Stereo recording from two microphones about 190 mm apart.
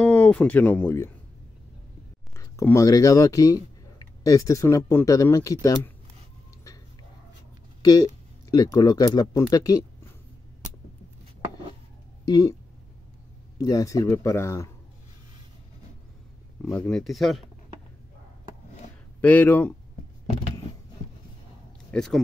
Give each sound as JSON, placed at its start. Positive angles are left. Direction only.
{"t": 0.0, "sound": "speech", "side_deg": 5}
{"t": 2.3, "sound": "speech", "side_deg": 15}
{"t": 7.8, "sound": "speech", "side_deg": 20}
{"t": 12.3, "sound": "speech", "side_deg": 20}
{"t": 13.6, "sound": "speech", "side_deg": 20}
{"t": 16.6, "sound": "speech", "side_deg": 5}
{"t": 19.2, "sound": "speech", "side_deg": 10}
{"t": 21.9, "sound": "speech", "side_deg": 0}